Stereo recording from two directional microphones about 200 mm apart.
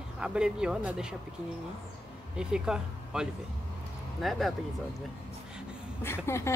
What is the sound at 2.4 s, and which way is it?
Speech, 5° right (ahead or behind).